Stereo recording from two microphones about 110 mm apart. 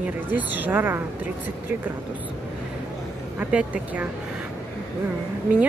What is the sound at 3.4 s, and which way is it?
Speech, 10° right (ahead or behind).